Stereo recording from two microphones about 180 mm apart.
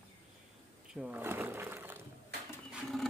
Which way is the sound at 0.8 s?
5° right (ahead or behind).